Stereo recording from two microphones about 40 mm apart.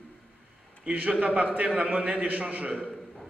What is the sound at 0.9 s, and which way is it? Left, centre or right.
A man's voice, right.